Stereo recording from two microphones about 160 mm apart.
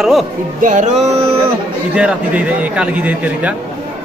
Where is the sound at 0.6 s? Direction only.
50° right (ahead or behind).